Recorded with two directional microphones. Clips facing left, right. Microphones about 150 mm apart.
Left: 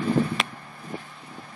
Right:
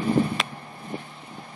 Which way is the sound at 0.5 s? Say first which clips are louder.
Right 2 dB; 25° right (ahead or behind).